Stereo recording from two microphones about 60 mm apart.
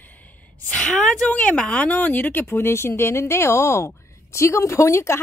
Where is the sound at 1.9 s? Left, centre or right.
Left.